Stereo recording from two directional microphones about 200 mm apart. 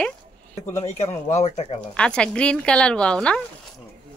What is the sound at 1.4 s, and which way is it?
Speech, 35° left (ahead or behind).